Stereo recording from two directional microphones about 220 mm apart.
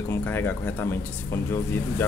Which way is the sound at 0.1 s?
10° left (ahead or behind).